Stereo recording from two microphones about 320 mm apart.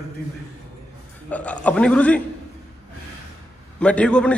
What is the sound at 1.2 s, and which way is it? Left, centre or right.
Speech, centre.